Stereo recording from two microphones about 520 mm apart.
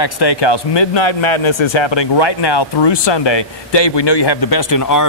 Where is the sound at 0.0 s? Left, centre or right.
Left.